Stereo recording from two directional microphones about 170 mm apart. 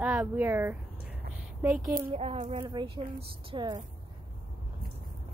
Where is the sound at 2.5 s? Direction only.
30° right (ahead or behind).